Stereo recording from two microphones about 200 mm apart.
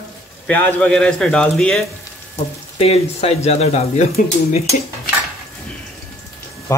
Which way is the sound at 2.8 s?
30° left (ahead or behind).